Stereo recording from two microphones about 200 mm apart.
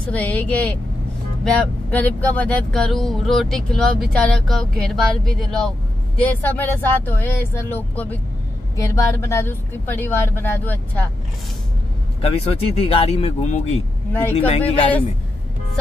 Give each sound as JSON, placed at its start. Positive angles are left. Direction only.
{"t": 0.0, "sound": "speech", "side_deg": 5}
{"t": 12.2, "sound": "speech", "side_deg": 30}